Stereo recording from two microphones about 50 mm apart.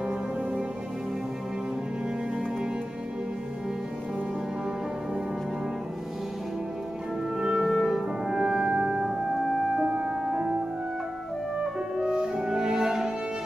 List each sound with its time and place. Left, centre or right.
7.3 s music: centre
9.3 s music: centre
9.8 s music: centre
10.0 s music: centre
11.6 s music: centre